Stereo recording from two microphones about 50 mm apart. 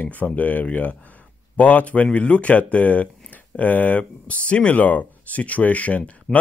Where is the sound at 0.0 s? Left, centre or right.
Left.